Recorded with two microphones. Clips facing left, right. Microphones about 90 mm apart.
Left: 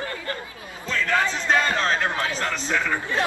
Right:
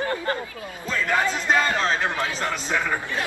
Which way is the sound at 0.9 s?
15° right (ahead or behind).